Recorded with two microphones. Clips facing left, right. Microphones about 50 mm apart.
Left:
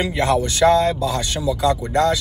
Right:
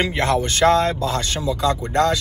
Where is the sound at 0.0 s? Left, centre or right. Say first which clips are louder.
Left 1 dB; right.